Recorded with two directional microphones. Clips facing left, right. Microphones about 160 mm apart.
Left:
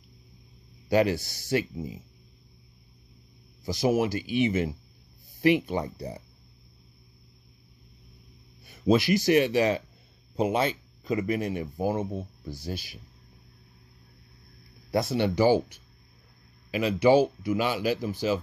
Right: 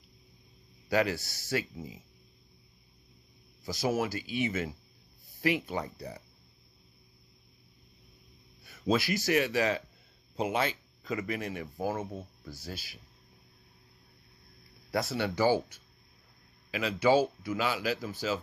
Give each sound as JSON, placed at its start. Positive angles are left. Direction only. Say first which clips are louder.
{"t": 0.8, "sound": "speech", "louder": "left 5 dB", "side_deg": 25}
{"t": 3.6, "sound": "speech", "louder": "left 6 dB", "side_deg": 15}
{"t": 8.6, "sound": "speech", "louder": "left 6 dB", "side_deg": 15}
{"t": 14.9, "sound": "speech", "louder": "left 6 dB", "side_deg": 20}